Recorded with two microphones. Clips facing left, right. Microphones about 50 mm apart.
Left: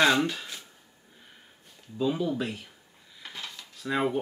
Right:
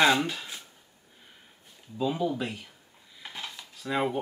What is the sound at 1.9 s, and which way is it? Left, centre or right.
Speech, centre.